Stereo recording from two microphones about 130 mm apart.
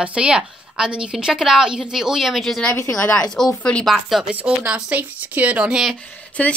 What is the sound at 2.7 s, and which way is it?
Speech, 20° left (ahead or behind).